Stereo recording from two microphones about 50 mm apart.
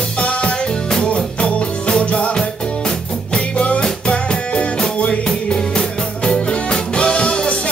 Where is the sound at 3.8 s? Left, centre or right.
Centre.